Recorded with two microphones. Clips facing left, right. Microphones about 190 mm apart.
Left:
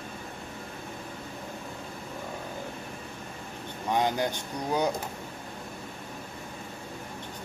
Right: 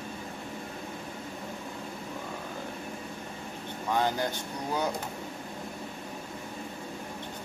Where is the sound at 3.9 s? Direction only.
15° left (ahead or behind).